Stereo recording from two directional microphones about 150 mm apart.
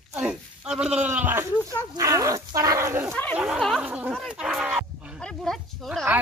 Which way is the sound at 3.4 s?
Centre (ahead or behind).